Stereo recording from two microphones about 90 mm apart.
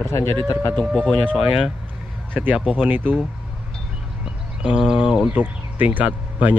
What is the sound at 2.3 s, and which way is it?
Speech, 20° right (ahead or behind).